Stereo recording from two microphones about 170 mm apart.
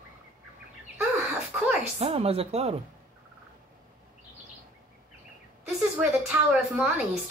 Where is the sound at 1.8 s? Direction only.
35° right (ahead or behind).